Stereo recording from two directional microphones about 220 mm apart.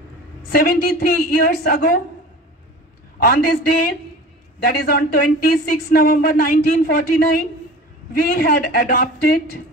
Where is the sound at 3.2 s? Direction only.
40° left (ahead or behind).